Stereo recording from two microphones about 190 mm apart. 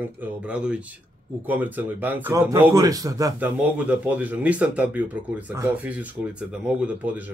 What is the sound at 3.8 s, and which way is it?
Speech, 5° right (ahead or behind).